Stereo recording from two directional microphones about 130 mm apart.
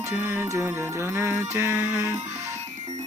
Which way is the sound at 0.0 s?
20° right (ahead or behind).